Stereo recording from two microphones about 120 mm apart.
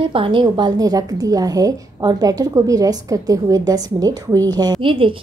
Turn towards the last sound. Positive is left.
turn(degrees=-50)  # may be behind; listen again after turning